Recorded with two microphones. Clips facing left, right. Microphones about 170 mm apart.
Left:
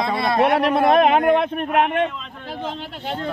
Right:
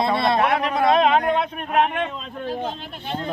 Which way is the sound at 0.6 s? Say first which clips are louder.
Left 3 dB; 60° left (ahead or behind).